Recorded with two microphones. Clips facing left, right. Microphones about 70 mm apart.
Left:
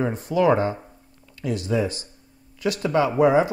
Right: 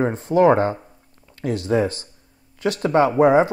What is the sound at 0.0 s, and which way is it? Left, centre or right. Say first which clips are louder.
Speech: right 4 dB; right.